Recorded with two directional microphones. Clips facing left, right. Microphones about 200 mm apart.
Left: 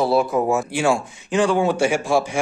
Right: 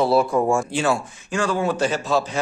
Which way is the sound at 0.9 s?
15° left (ahead or behind).